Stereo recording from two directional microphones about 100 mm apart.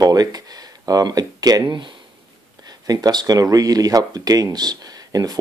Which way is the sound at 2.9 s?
45° right (ahead or behind).